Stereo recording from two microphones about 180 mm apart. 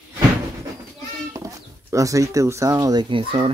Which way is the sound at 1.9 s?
20° right (ahead or behind).